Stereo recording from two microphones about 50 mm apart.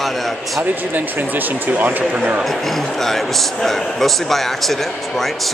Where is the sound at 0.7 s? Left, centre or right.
Right.